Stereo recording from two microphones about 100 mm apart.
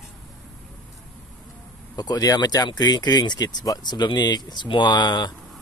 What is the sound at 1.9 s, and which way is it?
Speech, 40° left (ahead or behind).